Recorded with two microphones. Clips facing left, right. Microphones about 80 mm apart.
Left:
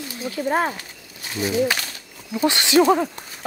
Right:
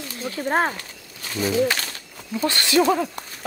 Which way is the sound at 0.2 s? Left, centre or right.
Right.